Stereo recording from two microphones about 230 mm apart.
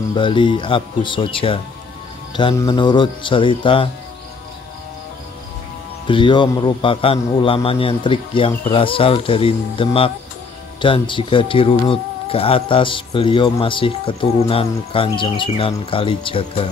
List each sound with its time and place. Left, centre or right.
0.1 s speech: left
6.0 s speech: left